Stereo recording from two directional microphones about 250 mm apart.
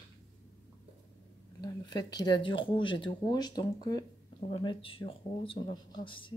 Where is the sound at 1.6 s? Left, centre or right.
Centre.